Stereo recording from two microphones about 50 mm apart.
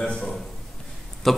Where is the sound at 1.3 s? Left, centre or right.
Centre.